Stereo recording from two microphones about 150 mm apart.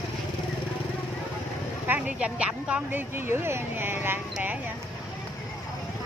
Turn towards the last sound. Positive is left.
turn(degrees=-10)  # may be behind; listen again after turning